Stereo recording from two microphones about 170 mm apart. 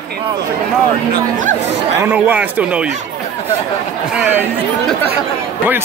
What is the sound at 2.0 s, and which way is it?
Speech, 10° right (ahead or behind).